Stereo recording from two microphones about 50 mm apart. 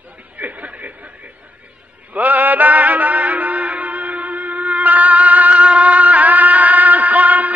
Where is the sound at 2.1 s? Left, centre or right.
Right.